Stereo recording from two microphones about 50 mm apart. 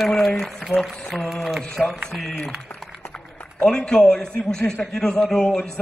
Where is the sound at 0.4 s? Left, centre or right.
Centre.